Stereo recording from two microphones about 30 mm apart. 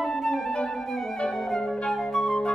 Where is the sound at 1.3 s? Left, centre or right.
Centre.